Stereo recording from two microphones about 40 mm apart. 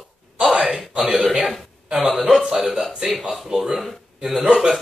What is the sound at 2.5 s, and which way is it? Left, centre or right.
Speech, centre.